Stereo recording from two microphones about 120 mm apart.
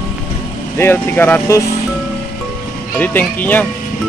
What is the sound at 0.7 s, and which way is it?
Speech, 20° left (ahead or behind).